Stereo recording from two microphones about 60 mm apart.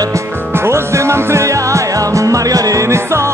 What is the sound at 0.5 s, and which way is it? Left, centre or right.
Music, right.